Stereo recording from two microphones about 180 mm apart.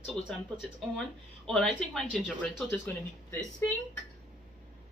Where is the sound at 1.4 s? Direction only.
Centre (ahead or behind).